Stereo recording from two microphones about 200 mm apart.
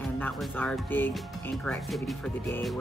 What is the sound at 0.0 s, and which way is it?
Speech, centre (ahead or behind).